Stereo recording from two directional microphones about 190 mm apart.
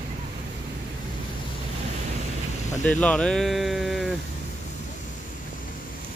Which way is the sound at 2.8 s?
5° left (ahead or behind).